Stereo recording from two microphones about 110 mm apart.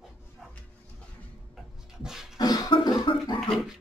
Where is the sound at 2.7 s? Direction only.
50° left (ahead or behind).